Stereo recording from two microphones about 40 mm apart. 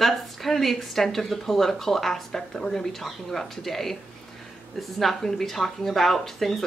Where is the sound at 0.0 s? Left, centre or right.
Centre.